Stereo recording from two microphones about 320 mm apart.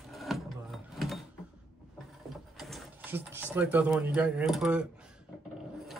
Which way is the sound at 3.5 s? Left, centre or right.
Centre.